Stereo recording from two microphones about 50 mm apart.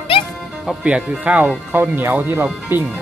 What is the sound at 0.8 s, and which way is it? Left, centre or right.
Speech, right.